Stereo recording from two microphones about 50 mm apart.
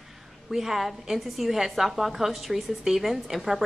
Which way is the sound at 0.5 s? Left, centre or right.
Centre.